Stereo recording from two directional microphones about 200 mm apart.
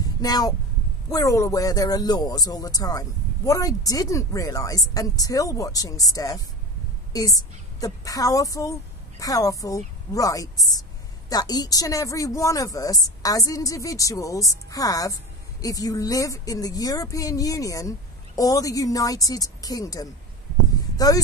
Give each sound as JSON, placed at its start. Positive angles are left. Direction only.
{"t": 0.0, "sound": "speech", "side_deg": 20}